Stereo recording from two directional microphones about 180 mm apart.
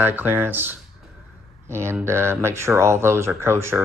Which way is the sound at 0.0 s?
10° right (ahead or behind).